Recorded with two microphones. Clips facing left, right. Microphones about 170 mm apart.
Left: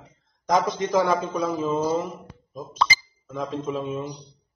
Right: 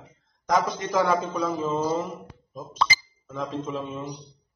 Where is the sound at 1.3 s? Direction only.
Centre (ahead or behind).